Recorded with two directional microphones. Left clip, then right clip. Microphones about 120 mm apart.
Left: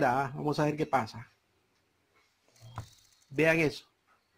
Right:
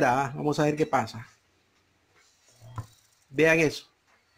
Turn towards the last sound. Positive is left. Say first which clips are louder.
# right 5 dB
turn(degrees=25)  # may be behind; listen again after turning